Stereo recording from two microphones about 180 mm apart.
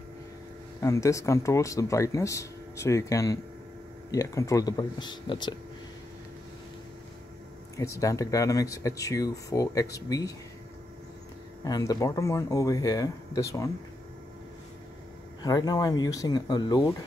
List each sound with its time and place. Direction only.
0.8 s speech: 15° left (ahead or behind)
7.7 s speech: 20° left (ahead or behind)
11.6 s speech: 20° left (ahead or behind)
15.4 s speech: 20° left (ahead or behind)